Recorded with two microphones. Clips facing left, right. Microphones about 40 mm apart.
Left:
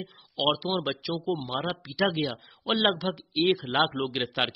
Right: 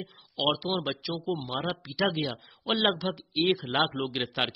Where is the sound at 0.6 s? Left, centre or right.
Centre.